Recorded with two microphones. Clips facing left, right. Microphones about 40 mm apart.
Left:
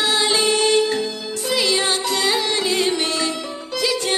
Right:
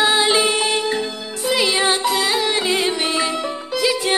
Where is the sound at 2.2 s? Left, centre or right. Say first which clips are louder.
Right 1 dB; centre.